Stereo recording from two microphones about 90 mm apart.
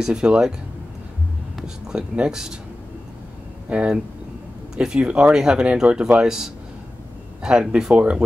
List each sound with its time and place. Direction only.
0.0 s speech: 10° right (ahead or behind)
1.6 s speech: 10° right (ahead or behind)
3.6 s speech: 10° right (ahead or behind)